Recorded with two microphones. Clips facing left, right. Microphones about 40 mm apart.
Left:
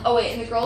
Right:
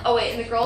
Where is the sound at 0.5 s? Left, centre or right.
Right.